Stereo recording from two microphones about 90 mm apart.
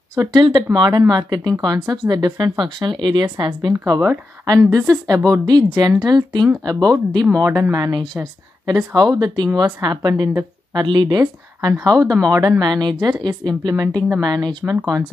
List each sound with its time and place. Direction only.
0.1 s speech: 50° right (ahead or behind)
3.8 s speech: 40° right (ahead or behind)
7.7 s a woman's voice: 50° right (ahead or behind)